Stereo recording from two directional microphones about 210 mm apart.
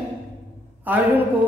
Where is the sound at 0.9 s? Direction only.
10° right (ahead or behind).